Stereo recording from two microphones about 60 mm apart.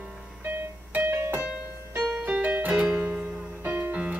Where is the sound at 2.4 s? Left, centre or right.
Right.